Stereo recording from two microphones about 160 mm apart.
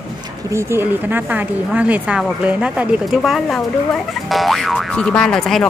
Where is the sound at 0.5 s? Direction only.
15° right (ahead or behind).